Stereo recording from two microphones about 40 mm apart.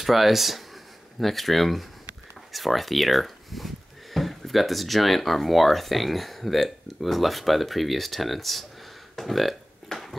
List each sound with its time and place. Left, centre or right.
0.0 s speech: centre
9.1 s burping: centre
9.9 s a sound: centre